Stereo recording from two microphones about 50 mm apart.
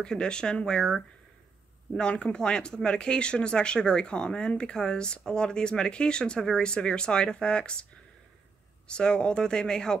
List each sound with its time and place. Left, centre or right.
0.0 s speech: centre
2.0 s speech: left
8.8 s speech: centre